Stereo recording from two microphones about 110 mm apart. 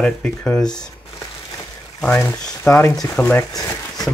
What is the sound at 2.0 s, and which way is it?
Speech, 15° left (ahead or behind).